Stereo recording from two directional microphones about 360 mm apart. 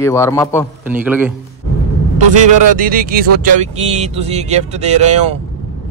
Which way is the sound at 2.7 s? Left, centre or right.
Right.